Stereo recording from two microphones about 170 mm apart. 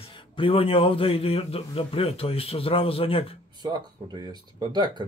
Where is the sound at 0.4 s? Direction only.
35° left (ahead or behind).